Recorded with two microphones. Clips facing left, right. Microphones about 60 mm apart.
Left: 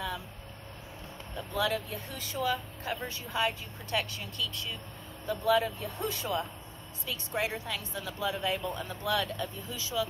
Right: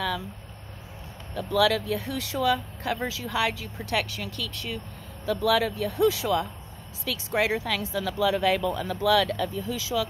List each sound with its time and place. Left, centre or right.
1.3 s speech: right
5.2 s speech: right
7.1 s a woman's voice: right